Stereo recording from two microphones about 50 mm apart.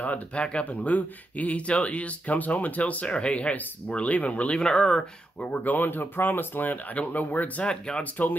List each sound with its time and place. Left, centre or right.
0.0 s speech: left
4.6 s speech: centre
5.5 s speech: left
7.6 s speech: centre
8.0 s speech: left